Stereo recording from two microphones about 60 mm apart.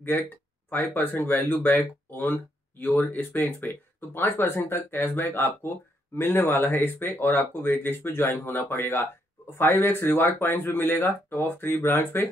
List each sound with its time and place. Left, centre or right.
0.7 s speech: left